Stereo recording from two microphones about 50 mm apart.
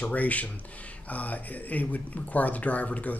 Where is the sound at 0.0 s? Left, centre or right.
Left.